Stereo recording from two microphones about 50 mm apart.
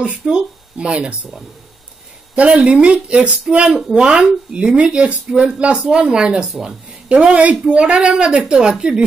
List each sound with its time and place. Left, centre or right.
0.2 s speech: centre